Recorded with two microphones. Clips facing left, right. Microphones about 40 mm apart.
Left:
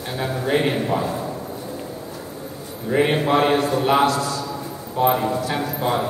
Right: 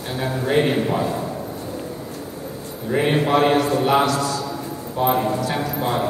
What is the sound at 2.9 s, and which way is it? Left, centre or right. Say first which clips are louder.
Speech: left 1 dB; centre.